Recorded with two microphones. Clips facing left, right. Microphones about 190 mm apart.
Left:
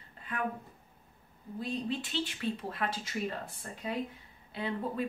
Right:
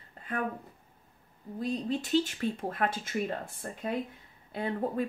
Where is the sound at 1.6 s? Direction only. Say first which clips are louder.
Right 3 dB; 40° right (ahead or behind).